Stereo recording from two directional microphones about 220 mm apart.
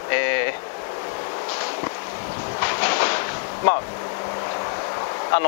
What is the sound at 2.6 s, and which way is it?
Vehicle, 15° left (ahead or behind).